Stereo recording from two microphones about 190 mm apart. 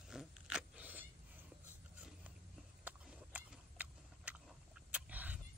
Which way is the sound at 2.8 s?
10° right (ahead or behind).